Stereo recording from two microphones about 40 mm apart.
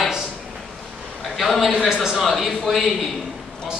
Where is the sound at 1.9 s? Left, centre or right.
Centre.